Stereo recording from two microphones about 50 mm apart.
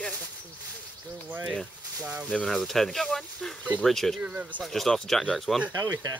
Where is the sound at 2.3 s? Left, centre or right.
Centre.